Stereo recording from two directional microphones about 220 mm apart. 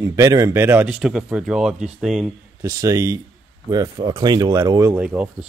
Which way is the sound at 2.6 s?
15° right (ahead or behind).